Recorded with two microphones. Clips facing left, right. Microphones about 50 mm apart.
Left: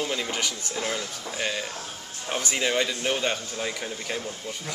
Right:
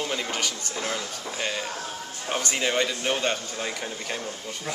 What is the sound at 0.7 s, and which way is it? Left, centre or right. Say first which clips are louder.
A man's voice: left 1 dB; centre.